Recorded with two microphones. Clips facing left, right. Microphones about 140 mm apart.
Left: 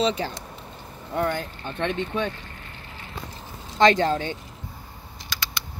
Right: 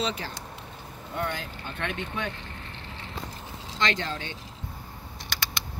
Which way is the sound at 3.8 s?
45° left (ahead or behind).